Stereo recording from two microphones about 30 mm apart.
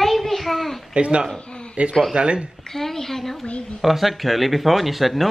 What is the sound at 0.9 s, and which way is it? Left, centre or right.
A man's voice, right.